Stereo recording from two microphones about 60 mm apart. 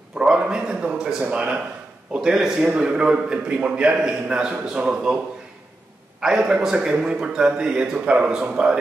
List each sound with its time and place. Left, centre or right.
0.2 s a man's voice: centre
6.2 s a man's voice: centre